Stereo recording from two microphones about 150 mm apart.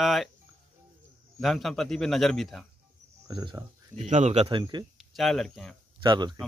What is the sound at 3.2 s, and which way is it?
Speech, 25° right (ahead or behind).